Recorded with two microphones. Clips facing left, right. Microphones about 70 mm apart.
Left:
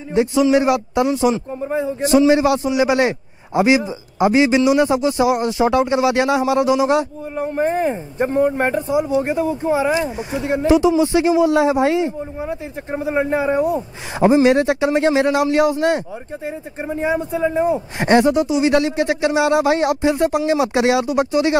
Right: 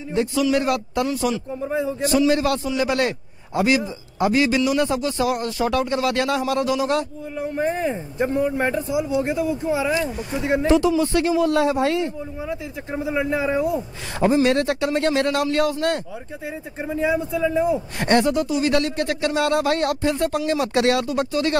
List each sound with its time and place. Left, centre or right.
0.1 s a man's voice: left
7.3 s speech: left; by 12.1 s centre
12.4 s a man's voice: left; by 16.0 s centre
16.4 s speech: left
17.9 s speech: centre